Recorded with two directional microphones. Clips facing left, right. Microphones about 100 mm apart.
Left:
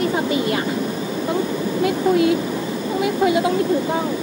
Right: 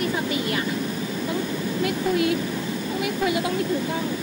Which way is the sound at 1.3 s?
25° left (ahead or behind).